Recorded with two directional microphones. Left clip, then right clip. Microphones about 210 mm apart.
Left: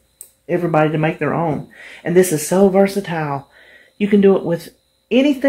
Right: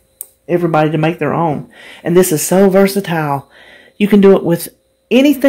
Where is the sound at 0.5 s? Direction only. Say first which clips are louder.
Right 3 dB; 40° right (ahead or behind).